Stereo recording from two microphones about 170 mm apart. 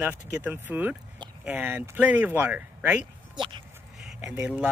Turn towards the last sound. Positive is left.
turn(degrees=-10)  # may be behind; listen again after turning